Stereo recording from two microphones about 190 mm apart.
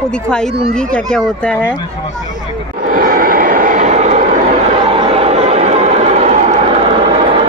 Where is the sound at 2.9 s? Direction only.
50° right (ahead or behind).